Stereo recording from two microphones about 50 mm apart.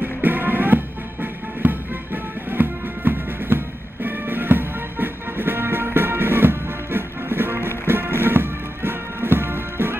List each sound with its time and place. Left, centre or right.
0.0 s music: right